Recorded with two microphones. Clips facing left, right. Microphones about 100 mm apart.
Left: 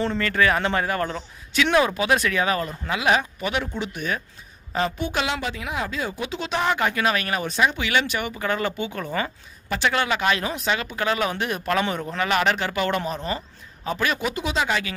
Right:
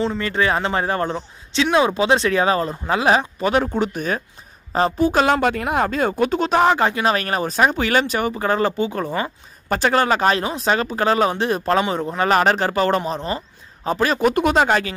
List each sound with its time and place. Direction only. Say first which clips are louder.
0.2 s speech: right 1 dB; 25° right (ahead or behind)
14.3 s speech: right 8 dB; 50° right (ahead or behind)